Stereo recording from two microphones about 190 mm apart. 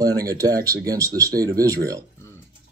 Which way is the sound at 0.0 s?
20° right (ahead or behind).